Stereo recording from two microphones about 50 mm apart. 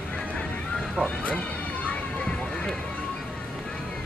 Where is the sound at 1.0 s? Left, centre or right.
Left.